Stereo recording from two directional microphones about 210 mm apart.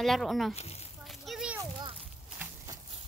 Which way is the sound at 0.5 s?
30° left (ahead or behind).